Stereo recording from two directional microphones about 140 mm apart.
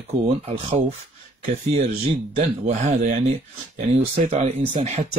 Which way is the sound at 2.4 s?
55° right (ahead or behind).